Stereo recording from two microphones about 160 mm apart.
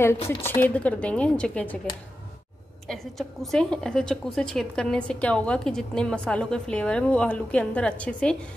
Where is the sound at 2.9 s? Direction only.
Centre (ahead or behind).